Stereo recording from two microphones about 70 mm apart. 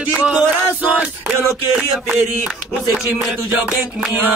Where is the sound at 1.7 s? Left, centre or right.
Centre.